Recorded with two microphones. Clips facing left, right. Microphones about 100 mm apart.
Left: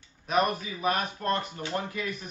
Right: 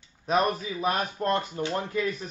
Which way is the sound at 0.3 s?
35° right (ahead or behind).